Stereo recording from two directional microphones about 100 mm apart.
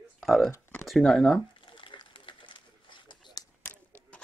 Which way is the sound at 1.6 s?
55° left (ahead or behind).